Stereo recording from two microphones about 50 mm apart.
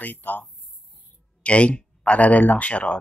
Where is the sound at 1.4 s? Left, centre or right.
Left.